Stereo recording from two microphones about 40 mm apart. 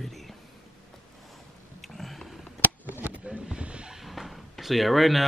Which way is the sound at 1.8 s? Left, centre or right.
Centre.